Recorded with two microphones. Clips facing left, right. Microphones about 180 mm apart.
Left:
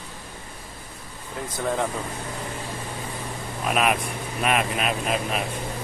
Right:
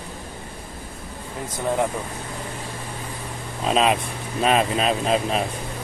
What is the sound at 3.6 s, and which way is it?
Speech, 25° right (ahead or behind).